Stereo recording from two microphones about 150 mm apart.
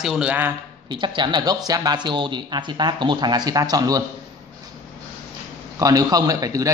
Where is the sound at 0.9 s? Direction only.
30° right (ahead or behind).